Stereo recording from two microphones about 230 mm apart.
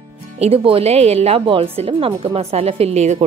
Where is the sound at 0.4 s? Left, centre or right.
Right.